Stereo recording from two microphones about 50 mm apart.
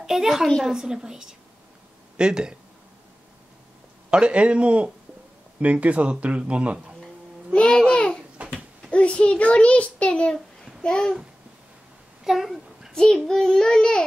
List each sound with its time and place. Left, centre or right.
0.0 s a woman's voice: centre
4.1 s speech: right
7.5 s babbling: centre
8.4 s babbling: right
8.9 s a child's voice: left
12.3 s a child's voice: centre
12.9 s a child's voice: centre